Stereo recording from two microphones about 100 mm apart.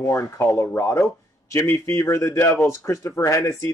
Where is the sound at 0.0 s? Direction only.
30° left (ahead or behind).